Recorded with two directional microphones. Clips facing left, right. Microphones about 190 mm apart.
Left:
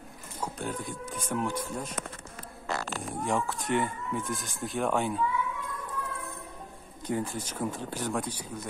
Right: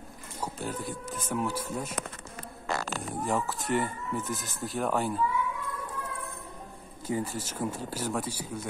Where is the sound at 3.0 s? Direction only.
Centre (ahead or behind).